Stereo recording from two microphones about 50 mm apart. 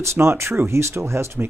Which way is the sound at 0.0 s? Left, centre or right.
Right.